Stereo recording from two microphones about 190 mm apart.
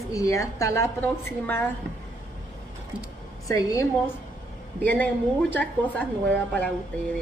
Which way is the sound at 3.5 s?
20° left (ahead or behind).